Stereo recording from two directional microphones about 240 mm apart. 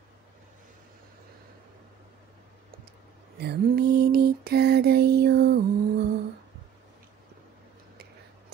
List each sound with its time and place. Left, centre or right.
3.3 s lullaby: right